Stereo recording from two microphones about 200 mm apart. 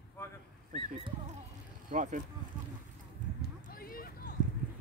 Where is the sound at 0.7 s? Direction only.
35° right (ahead or behind).